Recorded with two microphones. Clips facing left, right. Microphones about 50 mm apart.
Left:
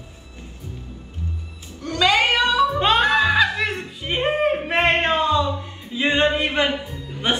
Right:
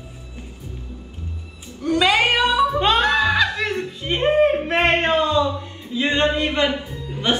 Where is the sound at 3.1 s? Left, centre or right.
Left.